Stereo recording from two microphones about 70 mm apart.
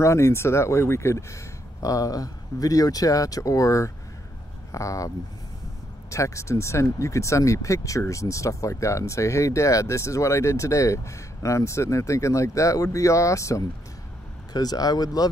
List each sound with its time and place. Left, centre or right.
0.0 s speech: left
14.5 s speech: left